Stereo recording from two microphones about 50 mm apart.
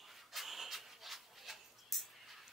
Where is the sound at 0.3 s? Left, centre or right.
Centre.